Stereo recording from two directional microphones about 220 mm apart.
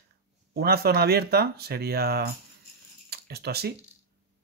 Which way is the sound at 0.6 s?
45° right (ahead or behind).